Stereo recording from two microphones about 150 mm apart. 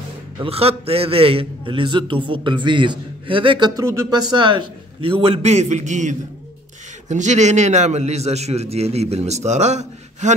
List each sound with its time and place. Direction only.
0.4 s a man's voice: 40° right (ahead or behind)